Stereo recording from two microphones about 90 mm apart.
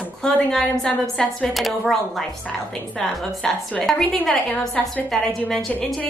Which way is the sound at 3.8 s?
5° left (ahead or behind).